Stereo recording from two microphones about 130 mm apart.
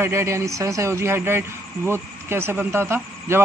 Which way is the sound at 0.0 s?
20° right (ahead or behind).